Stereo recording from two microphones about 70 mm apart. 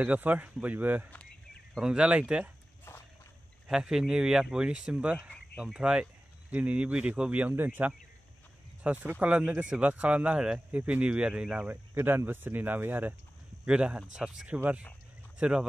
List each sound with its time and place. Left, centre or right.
0.0 s speech: right
1.8 s speech: centre
2.9 s a sound: left
3.6 s speech: centre
11.7 s speech: right
13.7 s speech: centre